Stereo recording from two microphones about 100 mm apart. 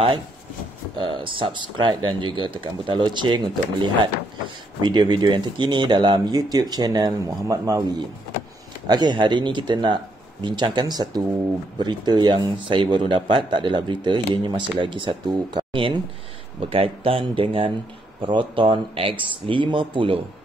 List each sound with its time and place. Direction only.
0.9 s a man's voice: 60° right (ahead or behind); by 7.8 s 35° right (ahead or behind)
8.8 s a man's voice: 45° right (ahead or behind)
16.6 s speech: 70° right (ahead or behind)